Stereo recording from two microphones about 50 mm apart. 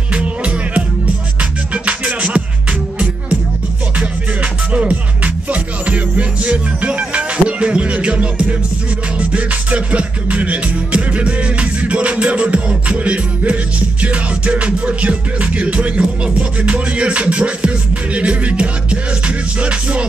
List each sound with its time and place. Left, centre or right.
0.1 s music: right
4.0 s music: right